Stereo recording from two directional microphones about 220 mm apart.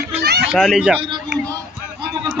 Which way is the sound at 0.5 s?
Centre (ahead or behind).